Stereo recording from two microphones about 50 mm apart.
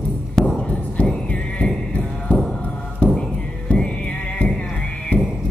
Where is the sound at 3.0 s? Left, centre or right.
Left.